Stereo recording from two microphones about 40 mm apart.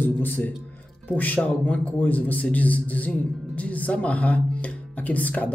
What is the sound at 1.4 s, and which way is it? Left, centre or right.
Speech, left.